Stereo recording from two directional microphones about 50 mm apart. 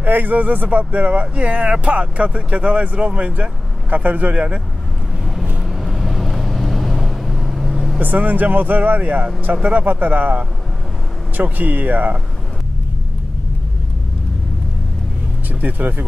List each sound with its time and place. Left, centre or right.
0.0 s speech: right
5.2 s vehicle: centre
8.0 s speech: right
11.3 s speech: right
15.6 s speech: right